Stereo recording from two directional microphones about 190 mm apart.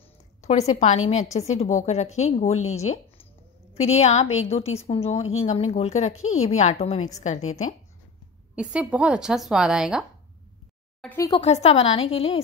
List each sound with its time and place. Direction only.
0.4 s a woman's voice: 35° left (ahead or behind)
8.5 s speech: 5° right (ahead or behind)
11.1 s speech: 20° left (ahead or behind)
11.4 s a woman's voice: 35° left (ahead or behind)